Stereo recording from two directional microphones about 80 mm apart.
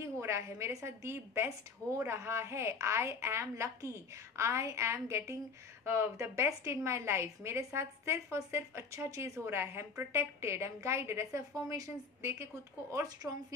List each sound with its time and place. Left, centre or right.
0.0 s a woman's voice: right
13.2 s speech: centre